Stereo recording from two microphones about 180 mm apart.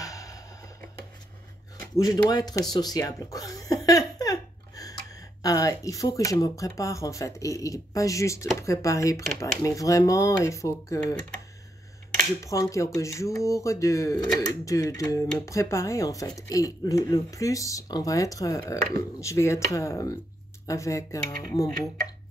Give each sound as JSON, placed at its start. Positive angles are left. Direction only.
{"t": 0.0, "sound": "a sound", "side_deg": 20}
{"t": 2.0, "sound": "speech", "side_deg": 20}
{"t": 4.2, "sound": "laughter", "side_deg": 20}
{"t": 5.4, "sound": "speech", "side_deg": 20}